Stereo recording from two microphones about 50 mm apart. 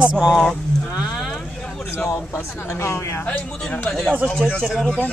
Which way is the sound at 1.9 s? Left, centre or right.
Left.